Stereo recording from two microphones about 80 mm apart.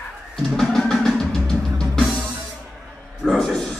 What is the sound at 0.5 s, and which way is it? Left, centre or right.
Drum, centre.